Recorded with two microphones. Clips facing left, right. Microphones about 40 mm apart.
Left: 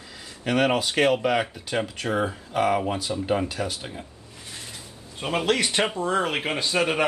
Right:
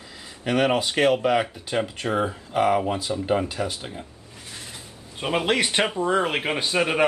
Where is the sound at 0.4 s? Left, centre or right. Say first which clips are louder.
Right 1 dB; centre.